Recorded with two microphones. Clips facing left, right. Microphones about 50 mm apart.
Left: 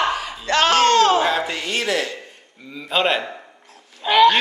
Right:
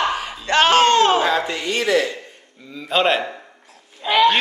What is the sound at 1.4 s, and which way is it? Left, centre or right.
A woman's voice, centre.